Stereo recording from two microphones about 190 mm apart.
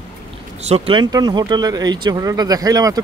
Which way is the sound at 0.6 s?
30° right (ahead or behind).